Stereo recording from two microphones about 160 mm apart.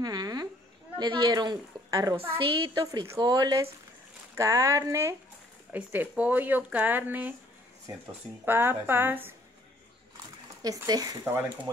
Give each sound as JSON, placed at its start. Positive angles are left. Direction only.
{"t": 0.0, "sound": "a woman's voice", "side_deg": -25}
{"t": 2.1, "sound": "a woman's voice", "side_deg": -35}
{"t": 8.5, "sound": "speech", "side_deg": -15}
{"t": 10.6, "sound": "a woman's voice", "side_deg": -25}